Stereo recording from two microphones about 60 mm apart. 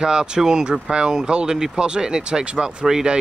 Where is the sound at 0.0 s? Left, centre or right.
Centre.